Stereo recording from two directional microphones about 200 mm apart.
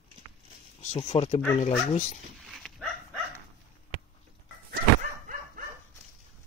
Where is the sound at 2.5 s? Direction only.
Centre (ahead or behind).